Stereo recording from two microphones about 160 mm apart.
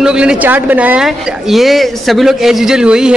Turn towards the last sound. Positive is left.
turn(degrees=-5)  # may be behind; listen again after turning